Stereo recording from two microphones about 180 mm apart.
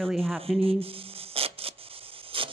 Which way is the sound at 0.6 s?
30° right (ahead or behind).